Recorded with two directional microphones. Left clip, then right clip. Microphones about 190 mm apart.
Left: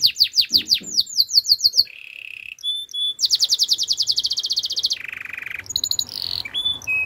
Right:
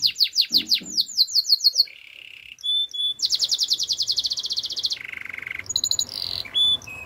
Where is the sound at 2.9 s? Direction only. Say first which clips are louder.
Left 3 dB; 20° left (ahead or behind).